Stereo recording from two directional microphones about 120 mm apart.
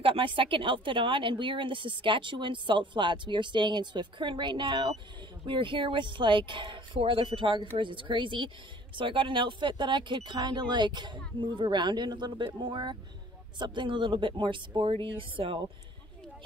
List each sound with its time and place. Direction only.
0.0 s speech: 45° right (ahead or behind)